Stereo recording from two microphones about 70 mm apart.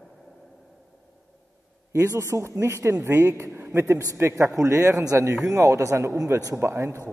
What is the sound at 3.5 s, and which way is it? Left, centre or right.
Speech, right.